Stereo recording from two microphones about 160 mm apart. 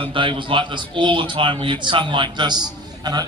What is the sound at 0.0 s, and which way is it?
A man's voice, 30° right (ahead or behind).